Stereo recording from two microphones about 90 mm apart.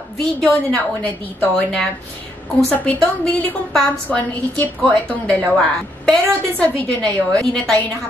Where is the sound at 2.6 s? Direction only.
15° left (ahead or behind).